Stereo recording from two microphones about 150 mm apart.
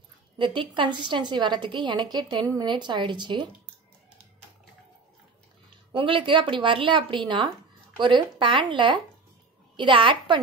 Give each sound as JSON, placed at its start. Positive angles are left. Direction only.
{"t": 0.4, "sound": "a woman's voice", "side_deg": -35}
{"t": 5.9, "sound": "a woman's voice", "side_deg": -35}